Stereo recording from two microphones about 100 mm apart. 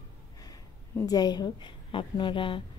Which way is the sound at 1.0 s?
40° left (ahead or behind).